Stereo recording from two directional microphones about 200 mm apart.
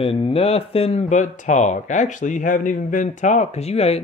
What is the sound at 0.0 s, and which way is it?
Speech, 30° left (ahead or behind).